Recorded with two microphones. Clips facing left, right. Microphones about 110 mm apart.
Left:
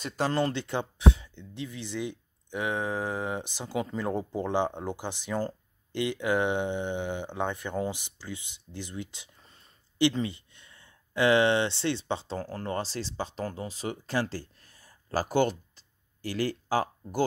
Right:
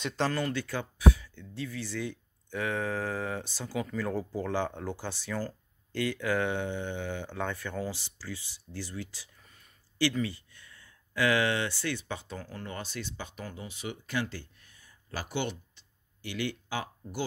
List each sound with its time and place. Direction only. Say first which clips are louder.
0.0 s speech: even; 10° left (ahead or behind)
0.3 s speech: left 4 dB; 25° left (ahead or behind)